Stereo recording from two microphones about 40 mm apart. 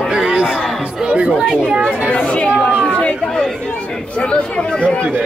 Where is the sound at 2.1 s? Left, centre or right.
Left.